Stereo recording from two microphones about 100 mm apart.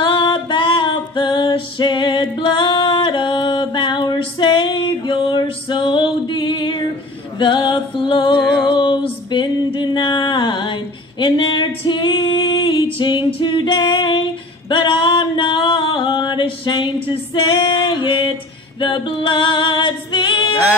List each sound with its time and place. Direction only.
0.0 s female singing: 60° left (ahead or behind)
7.3 s music: 55° left (ahead or behind)
8.7 s a sound: 55° left (ahead or behind)
18.8 s female singing: 55° left (ahead or behind)